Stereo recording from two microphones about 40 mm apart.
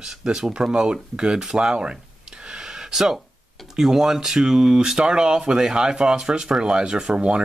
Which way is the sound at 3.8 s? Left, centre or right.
Centre.